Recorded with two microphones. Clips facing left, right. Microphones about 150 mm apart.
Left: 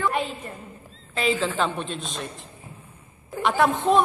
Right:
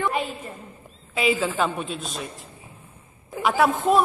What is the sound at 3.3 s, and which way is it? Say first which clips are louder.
Speech: right 1 dB; 5° right (ahead or behind).